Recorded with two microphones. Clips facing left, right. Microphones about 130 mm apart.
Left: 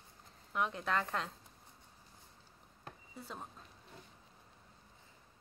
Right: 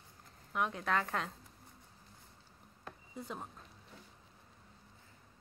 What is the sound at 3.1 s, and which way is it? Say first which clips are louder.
Speech: right 4 dB; 15° right (ahead or behind).